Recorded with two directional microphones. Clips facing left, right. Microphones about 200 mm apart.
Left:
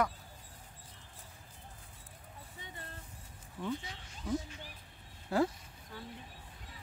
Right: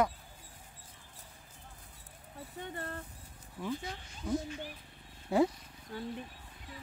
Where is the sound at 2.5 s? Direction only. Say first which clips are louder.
Right 10 dB; 55° right (ahead or behind).